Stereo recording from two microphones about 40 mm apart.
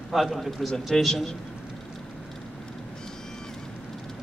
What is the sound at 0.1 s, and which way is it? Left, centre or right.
A man's voice, centre.